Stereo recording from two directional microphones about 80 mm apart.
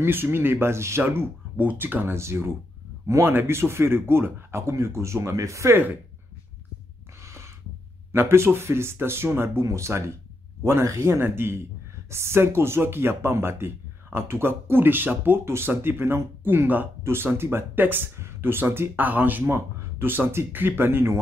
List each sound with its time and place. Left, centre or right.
0.0 s speech: right
8.1 s speech: right